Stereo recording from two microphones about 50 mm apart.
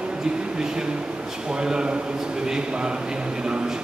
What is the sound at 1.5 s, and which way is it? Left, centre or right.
Speech, centre.